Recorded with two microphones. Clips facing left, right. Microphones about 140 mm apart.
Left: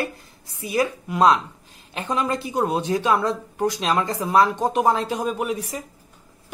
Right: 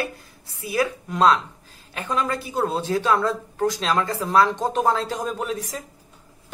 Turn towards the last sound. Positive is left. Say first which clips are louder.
# left 2 dB
turn(degrees=10)  # may be behind; listen again after turning